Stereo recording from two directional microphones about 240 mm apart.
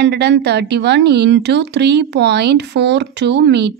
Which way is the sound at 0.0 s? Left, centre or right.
Right.